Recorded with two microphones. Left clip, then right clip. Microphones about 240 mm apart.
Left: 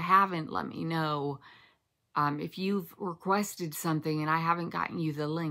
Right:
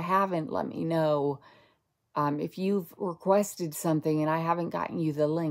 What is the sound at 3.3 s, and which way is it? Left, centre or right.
Speech, left.